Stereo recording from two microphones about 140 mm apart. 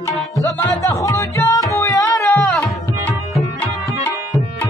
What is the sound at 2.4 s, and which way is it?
Tabla, 5° left (ahead or behind).